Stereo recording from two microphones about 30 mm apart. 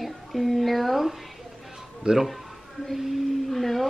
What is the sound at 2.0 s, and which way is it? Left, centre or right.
Speech, right.